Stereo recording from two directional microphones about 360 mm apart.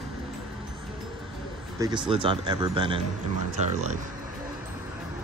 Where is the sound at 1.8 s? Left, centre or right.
Centre.